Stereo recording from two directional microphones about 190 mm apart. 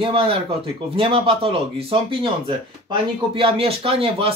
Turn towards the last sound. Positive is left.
turn(degrees=-30)  # may be behind; listen again after turning